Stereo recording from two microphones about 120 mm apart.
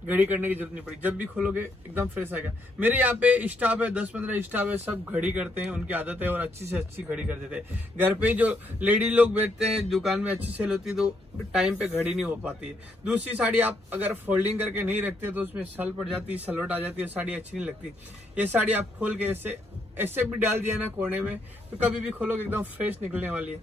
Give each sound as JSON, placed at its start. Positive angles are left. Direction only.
{"t": 0.1, "sound": "a man's voice", "side_deg": -15}
{"t": 9.6, "sound": "a man's voice", "side_deg": 0}